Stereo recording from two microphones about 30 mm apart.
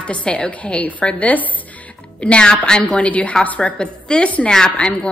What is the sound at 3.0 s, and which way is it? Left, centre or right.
Speech, left.